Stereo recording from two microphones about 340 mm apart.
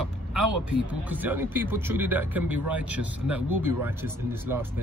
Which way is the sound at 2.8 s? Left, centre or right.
Right.